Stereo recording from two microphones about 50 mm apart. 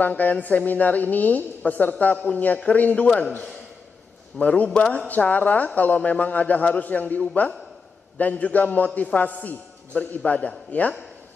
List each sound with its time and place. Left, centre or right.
0.0 s a man's voice: left
4.4 s a man's voice: left
4.6 s a man's voice: centre
4.9 s a man's voice: left